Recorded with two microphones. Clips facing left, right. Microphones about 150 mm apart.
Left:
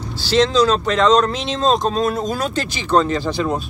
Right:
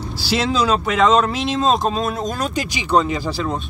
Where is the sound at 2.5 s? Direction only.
10° right (ahead or behind).